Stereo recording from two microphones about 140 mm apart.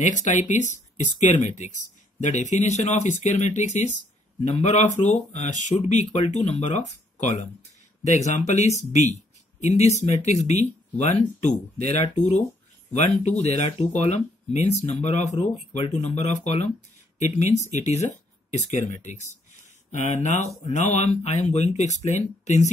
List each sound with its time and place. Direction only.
0.0 s speech: 60° left (ahead or behind)